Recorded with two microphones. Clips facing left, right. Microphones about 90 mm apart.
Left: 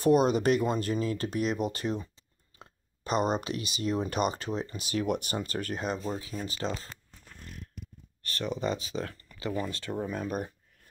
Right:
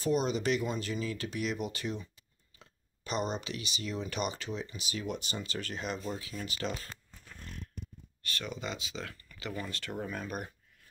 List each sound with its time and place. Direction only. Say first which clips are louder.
0.0 s speech: left 7 dB; 50° left (ahead or behind)
5.9 s speech: left 4 dB; 30° left (ahead or behind)
8.4 s speech: left 8 dB; 35° left (ahead or behind)